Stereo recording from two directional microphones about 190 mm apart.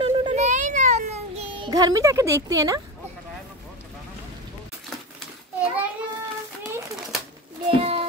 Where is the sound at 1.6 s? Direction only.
20° right (ahead or behind).